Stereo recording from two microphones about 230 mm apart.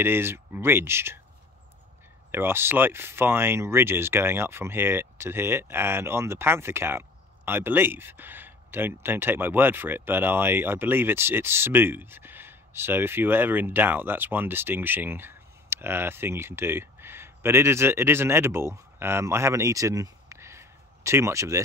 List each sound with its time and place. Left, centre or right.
0.0 s speech: centre
2.3 s speech: centre